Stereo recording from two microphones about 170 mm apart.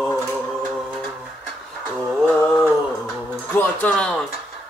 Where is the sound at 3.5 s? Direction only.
10° left (ahead or behind).